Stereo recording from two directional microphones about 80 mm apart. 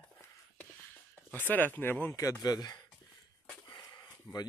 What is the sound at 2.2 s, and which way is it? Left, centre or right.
Speech, left.